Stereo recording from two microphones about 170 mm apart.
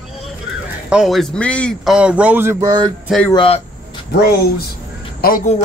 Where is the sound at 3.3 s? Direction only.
30° left (ahead or behind).